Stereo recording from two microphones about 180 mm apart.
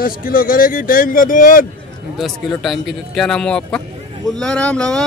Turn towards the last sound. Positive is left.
turn(degrees=5)  # may be behind; listen again after turning